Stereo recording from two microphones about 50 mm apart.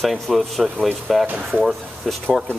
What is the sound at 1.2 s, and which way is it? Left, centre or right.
Speech, right.